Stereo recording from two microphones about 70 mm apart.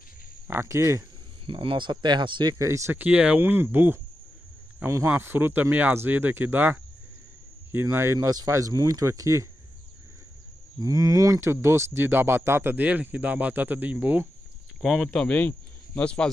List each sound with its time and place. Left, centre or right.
0.5 s speech: right
1.9 s speech: right
2.6 s speech: right
2.9 s speech: right
3.3 s speech: right
4.8 s speech: right
5.2 s speech: right
7.9 s speech: right
8.5 s speech: right
10.8 s speech: right
12.7 s speech: right
15.1 s speech: centre